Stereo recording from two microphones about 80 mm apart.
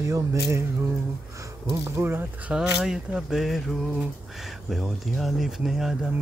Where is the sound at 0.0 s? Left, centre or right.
Right.